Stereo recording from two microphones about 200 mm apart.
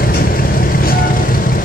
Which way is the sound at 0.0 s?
45° left (ahead or behind).